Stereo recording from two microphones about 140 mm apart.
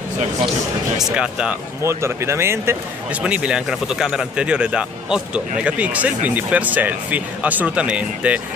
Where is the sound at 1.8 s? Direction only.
20° right (ahead or behind).